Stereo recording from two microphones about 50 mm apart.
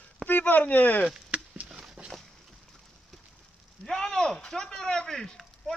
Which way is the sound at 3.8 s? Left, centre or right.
Centre.